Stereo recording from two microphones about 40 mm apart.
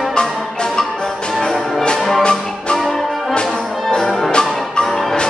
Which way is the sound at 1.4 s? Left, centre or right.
Centre.